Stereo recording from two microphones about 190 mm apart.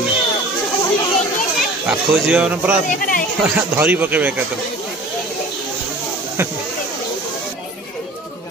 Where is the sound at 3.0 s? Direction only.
50° left (ahead or behind).